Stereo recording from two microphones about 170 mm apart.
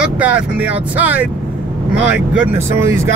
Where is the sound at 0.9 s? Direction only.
10° right (ahead or behind).